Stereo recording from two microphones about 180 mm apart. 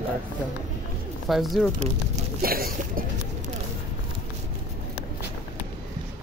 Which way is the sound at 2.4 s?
55° right (ahead or behind).